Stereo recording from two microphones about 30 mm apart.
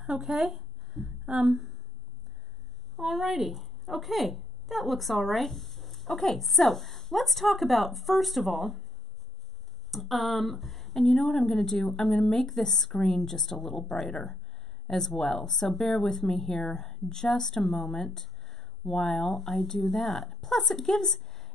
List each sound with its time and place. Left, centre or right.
0.0 s speech: centre
0.5 s a sound: centre
3.0 s a woman's voice: centre
9.8 s speech: centre